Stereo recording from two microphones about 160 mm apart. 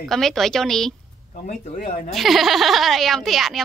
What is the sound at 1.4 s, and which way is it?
Speech, 45° left (ahead or behind).